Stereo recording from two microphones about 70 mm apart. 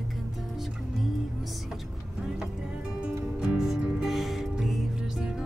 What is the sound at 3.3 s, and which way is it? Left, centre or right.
Music, centre.